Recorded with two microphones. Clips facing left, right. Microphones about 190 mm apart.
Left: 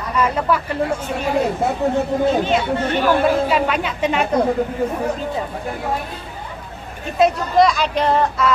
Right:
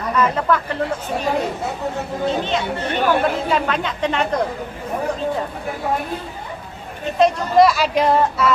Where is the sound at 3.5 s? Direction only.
10° left (ahead or behind).